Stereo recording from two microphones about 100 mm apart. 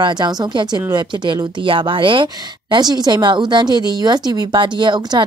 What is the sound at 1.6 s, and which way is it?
A woman's voice, 60° right (ahead or behind).